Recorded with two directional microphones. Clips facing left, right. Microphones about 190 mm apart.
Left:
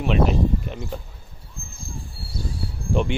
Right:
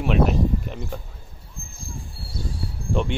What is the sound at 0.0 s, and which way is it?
Speech, centre (ahead or behind).